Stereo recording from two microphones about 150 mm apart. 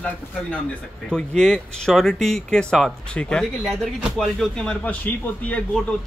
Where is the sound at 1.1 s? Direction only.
5° left (ahead or behind).